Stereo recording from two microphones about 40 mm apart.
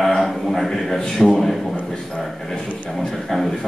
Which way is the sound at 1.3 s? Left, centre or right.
Centre.